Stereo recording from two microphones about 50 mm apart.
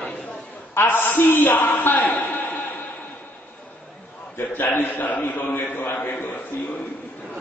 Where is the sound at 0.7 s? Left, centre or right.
Left.